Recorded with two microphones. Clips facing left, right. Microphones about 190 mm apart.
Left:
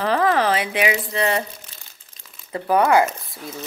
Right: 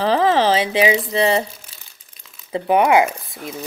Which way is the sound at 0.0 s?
30° right (ahead or behind).